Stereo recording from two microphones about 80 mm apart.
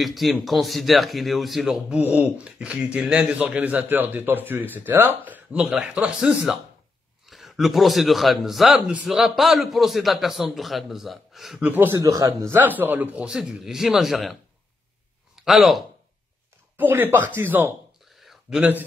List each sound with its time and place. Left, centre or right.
0.0 s a man's voice: centre
2.0 s a man's voice: centre
11.6 s speech: right
12.0 s a man's voice: right
12.3 s a man's voice: right; by 14.3 s centre
15.3 s speech: centre
16.7 s speech: right
18.0 s a sound: centre
18.6 s speech: right